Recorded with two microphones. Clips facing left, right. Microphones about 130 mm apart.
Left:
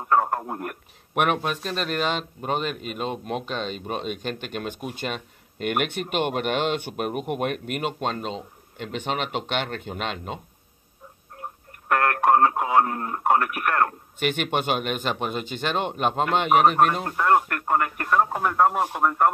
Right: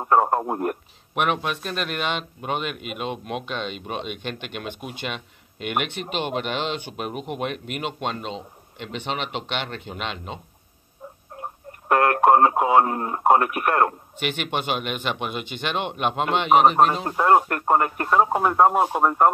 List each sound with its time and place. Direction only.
0.0 s speech: 25° right (ahead or behind)
1.1 s a man's voice: 50° left (ahead or behind)
11.9 s speech: 20° right (ahead or behind)
14.2 s speech: 45° left (ahead or behind)
16.5 s speech: 30° right (ahead or behind)
17.0 s speech: 20° right (ahead or behind)